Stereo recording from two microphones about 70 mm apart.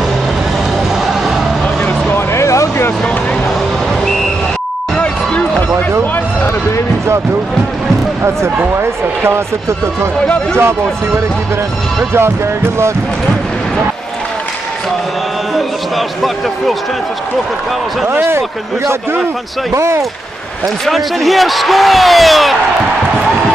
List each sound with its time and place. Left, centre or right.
1.9 s vehicle: left
2.3 s vehicle: left
4.9 s a sound: centre
8.7 s speech: right
10.2 s speech: centre
18.0 s speech: right
19.7 s speech: right
20.8 s speech: centre